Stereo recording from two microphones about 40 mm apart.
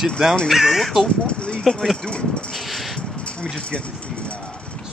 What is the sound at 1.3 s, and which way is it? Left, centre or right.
Speech, left.